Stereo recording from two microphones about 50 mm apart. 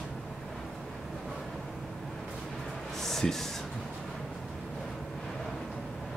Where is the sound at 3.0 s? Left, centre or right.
Centre.